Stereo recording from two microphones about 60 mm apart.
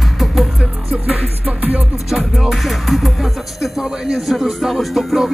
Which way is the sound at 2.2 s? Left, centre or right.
Centre.